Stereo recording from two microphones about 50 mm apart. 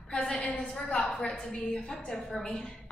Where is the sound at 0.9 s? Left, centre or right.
Left.